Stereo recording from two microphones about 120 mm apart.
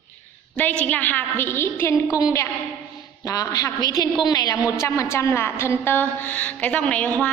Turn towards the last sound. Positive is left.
turn(degrees=10)  # may be behind; listen again after turning